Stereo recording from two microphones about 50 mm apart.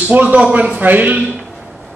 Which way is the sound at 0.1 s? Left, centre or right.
Right.